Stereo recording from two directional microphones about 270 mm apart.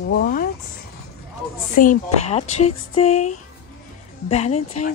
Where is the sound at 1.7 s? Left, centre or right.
Left.